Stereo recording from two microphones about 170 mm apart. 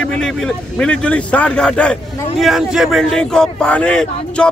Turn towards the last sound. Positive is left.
turn(degrees=5)  # may be behind; listen again after turning